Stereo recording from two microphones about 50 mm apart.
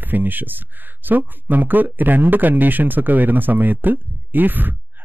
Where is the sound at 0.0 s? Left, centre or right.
Right.